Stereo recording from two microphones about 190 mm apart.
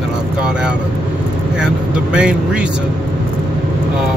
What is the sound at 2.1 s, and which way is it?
Speech, 5° right (ahead or behind).